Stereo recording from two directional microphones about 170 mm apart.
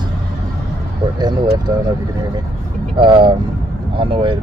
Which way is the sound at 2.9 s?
30° right (ahead or behind).